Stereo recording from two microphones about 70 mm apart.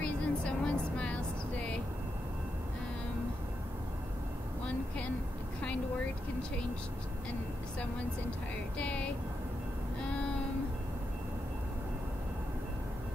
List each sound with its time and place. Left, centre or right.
0.0 s vehicle: centre
4.6 s a sound: centre
8.7 s vehicle: centre